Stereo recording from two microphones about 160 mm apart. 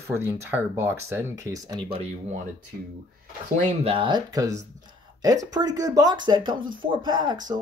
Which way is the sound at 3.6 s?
35° right (ahead or behind).